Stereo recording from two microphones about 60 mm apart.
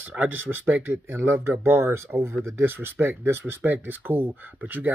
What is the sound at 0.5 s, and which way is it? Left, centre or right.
Speech, right.